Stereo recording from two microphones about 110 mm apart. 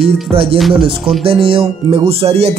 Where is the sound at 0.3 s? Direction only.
60° right (ahead or behind).